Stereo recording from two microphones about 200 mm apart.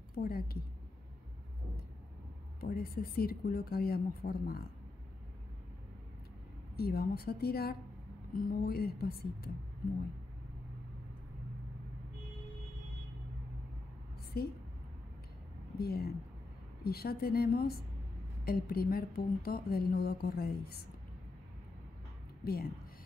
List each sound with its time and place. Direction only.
0.1 s speech: 50° left (ahead or behind)
2.6 s speech: 50° left (ahead or behind)
6.8 s speech: 50° left (ahead or behind)
14.3 s speech: 50° left (ahead or behind)
15.8 s speech: 50° left (ahead or behind)
22.4 s a woman's voice: 50° left (ahead or behind)